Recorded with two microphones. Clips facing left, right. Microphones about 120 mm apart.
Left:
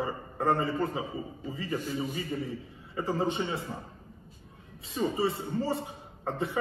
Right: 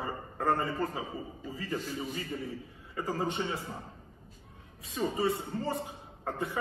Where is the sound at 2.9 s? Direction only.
25° left (ahead or behind).